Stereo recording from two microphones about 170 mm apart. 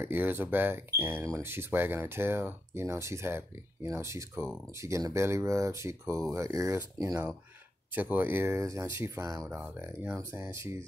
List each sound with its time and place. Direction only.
0.0 s speech: 10° right (ahead or behind)